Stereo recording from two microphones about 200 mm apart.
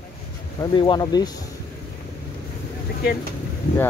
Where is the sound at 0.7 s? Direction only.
25° left (ahead or behind).